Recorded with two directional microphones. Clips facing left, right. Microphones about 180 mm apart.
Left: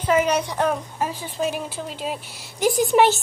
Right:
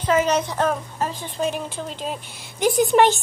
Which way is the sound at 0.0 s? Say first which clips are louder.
Even; 10° left (ahead or behind).